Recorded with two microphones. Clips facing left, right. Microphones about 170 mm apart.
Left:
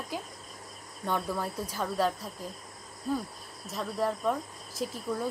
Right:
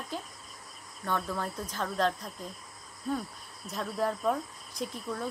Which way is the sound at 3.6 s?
Centre (ahead or behind).